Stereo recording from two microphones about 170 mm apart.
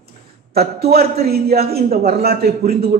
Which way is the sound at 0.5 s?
65° right (ahead or behind).